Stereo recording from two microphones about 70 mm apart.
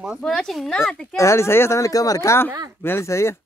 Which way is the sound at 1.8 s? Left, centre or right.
Left.